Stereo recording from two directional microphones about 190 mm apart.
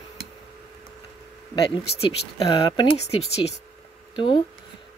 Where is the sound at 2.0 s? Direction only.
25° left (ahead or behind).